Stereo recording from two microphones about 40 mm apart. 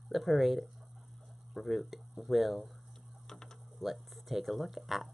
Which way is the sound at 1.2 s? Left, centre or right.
Centre.